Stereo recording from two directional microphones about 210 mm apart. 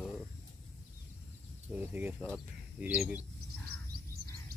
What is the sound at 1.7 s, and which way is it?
Speech, 10° right (ahead or behind).